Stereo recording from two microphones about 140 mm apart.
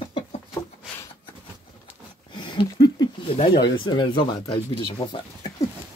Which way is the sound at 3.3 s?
40° left (ahead or behind).